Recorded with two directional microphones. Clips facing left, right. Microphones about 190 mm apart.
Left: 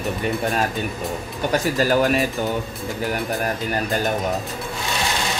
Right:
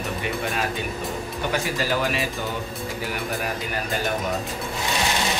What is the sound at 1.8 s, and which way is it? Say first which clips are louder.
Speech: left 9 dB; 45° left (ahead or behind).